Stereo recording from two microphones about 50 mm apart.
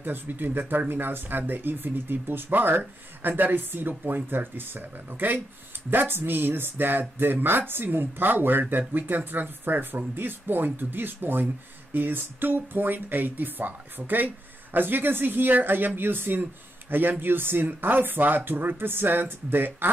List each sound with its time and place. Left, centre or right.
0.0 s speech: right